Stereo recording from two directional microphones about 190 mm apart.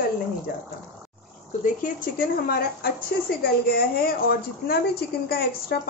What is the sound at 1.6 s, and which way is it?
Speech, 45° left (ahead or behind).